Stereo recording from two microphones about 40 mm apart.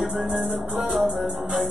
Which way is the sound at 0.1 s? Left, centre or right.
Centre.